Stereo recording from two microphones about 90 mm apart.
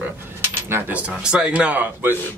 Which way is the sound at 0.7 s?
25° right (ahead or behind).